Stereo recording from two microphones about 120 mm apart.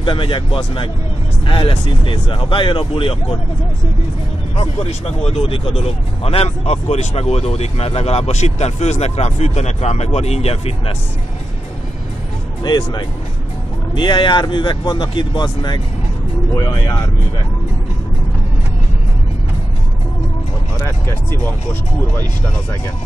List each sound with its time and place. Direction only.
0.0 s speech: 45° left (ahead or behind)
4.6 s speech: 55° left (ahead or behind)
12.6 s speech: 35° left (ahead or behind)
20.8 s speech: 20° left (ahead or behind)